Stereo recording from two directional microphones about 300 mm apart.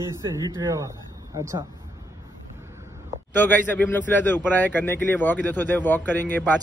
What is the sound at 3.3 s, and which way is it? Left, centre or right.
Speech, centre.